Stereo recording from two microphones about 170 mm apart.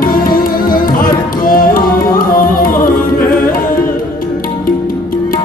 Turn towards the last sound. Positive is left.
turn(degrees=55)  # may be behind; listen again after turning